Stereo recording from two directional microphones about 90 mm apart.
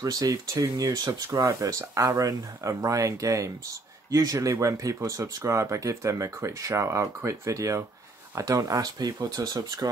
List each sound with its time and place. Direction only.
0.0 s speech: 40° right (ahead or behind)